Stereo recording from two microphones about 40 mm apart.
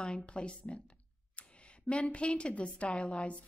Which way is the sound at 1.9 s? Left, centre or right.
Left.